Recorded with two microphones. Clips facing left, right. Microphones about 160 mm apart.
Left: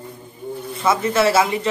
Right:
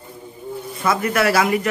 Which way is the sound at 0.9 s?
25° left (ahead or behind).